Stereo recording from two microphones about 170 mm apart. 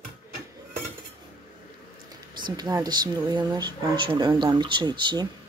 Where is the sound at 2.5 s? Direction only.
20° right (ahead or behind).